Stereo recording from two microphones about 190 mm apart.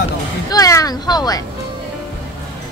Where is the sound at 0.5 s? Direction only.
20° left (ahead or behind).